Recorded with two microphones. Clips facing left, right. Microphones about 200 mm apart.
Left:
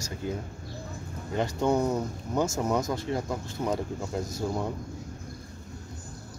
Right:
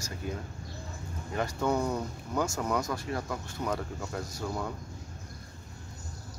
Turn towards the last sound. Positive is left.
turn(degrees=20)  # may be behind; listen again after turning